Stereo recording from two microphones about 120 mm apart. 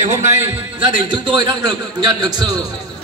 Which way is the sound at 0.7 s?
40° right (ahead or behind).